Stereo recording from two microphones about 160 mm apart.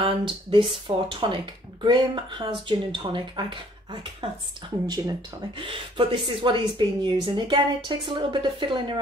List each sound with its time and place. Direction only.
0.0 s speech: 30° right (ahead or behind)
5.6 s speech: 35° right (ahead or behind)